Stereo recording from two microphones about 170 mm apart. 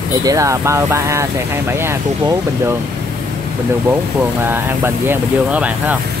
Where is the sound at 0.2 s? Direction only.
20° right (ahead or behind).